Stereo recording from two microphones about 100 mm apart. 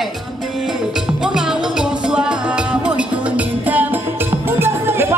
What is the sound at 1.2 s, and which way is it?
Music, 5° right (ahead or behind).